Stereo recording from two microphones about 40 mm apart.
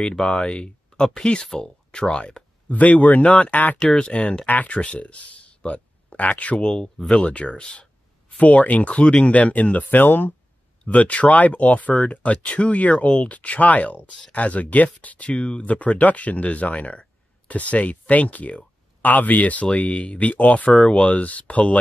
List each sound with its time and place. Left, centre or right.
0.0 s speech: left
2.7 s speech: left
3.8 s speech: left
4.5 s speech: left
6.6 s speech: left
10.9 s speech: left